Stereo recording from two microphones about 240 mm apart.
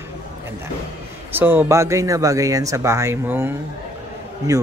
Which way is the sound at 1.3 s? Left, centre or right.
Centre.